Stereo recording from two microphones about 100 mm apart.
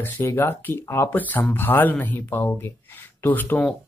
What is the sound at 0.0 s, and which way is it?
Speech, 20° left (ahead or behind).